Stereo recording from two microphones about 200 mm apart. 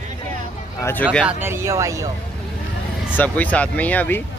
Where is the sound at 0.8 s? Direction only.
10° left (ahead or behind).